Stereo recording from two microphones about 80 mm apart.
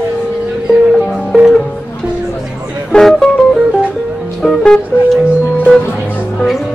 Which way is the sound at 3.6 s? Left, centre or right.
Centre.